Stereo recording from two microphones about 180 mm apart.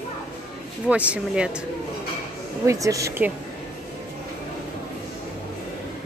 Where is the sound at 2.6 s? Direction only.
15° right (ahead or behind).